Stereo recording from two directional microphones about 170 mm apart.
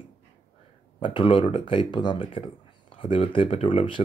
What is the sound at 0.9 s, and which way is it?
Speech, 30° left (ahead or behind).